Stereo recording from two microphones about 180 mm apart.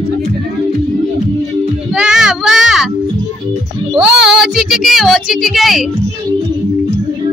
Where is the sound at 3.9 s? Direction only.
5° right (ahead or behind).